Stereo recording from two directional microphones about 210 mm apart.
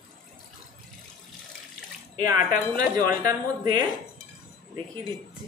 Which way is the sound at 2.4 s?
40° left (ahead or behind).